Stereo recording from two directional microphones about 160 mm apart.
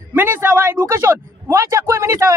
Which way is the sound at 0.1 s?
15° right (ahead or behind).